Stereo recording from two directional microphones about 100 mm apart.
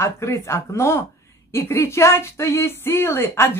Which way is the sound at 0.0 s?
30° left (ahead or behind).